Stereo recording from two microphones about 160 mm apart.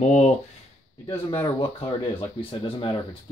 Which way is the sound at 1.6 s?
35° left (ahead or behind).